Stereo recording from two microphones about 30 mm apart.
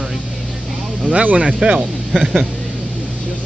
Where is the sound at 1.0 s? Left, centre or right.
Right.